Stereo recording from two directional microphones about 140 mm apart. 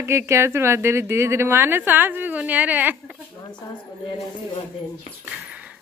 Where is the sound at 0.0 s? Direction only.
20° right (ahead or behind).